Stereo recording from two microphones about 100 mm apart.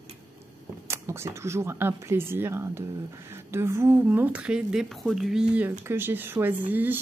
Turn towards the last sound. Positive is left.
turn(degrees=-20)  # may be behind; listen again after turning